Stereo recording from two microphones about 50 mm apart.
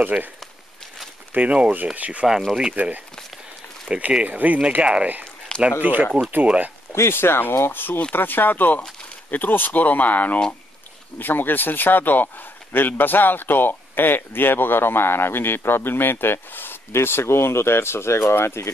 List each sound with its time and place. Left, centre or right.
0.0 s speech: right
1.3 s speech: right
4.8 s speech: right
5.8 s speech: right
6.4 s speech: right
6.9 s speech: left